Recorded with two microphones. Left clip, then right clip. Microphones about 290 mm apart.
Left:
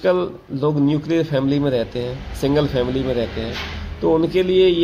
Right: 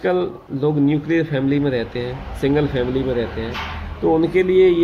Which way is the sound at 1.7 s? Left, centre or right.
Left.